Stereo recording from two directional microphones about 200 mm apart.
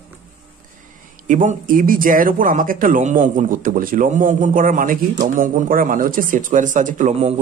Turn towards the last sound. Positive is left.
turn(degrees=-35)  # may be behind; listen again after turning